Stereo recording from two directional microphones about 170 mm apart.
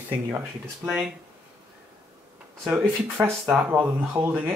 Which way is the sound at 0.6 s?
Centre (ahead or behind).